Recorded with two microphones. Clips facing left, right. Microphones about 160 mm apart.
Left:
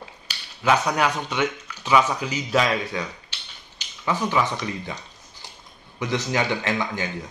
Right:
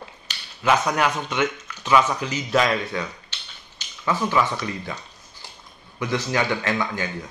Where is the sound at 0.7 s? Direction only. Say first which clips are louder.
Even; 15° left (ahead or behind).